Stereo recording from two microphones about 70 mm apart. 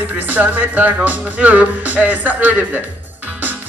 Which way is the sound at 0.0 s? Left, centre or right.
Right.